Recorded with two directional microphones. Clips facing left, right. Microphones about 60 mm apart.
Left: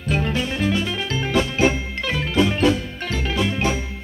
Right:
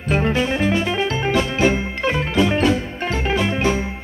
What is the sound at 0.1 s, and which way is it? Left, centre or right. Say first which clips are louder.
Music: right 4 dB; right.